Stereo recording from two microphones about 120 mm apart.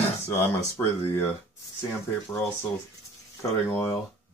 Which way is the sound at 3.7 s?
30° left (ahead or behind).